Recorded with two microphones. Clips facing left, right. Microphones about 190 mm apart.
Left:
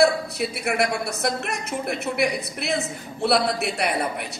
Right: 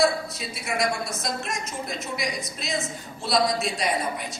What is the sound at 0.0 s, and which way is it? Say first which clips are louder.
A woman's voice: left 4 dB; 60° left (ahead or behind).